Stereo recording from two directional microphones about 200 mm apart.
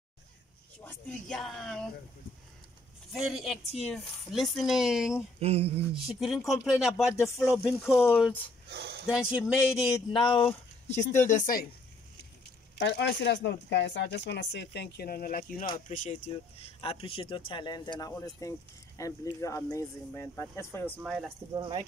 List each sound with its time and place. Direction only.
0.8 s speech: 5° left (ahead or behind)
3.1 s speech: centre (ahead or behind)
5.4 s speech: 30° right (ahead or behind)
6.0 s speech: centre (ahead or behind)
10.2 s speech: 25° left (ahead or behind)
12.7 s speech: 55° left (ahead or behind); by 21.0 s 10° left (ahead or behind)
21.0 s speech: centre (ahead or behind)
21.5 s speech: 25° right (ahead or behind)